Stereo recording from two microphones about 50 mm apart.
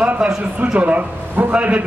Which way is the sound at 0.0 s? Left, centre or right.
Right.